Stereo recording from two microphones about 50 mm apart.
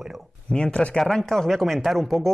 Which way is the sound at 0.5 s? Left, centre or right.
Left.